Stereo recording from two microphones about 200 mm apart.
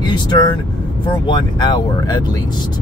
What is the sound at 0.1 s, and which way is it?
Speech, 20° left (ahead or behind).